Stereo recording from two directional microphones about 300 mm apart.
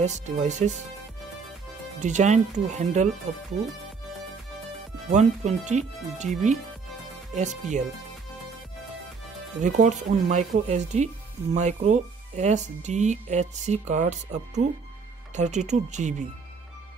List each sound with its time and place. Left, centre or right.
0.0 s speech: right
2.0 s speech: right
5.1 s speech: right
9.6 s speech: right